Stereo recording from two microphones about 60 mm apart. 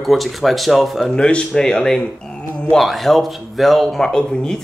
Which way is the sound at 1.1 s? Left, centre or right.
Centre.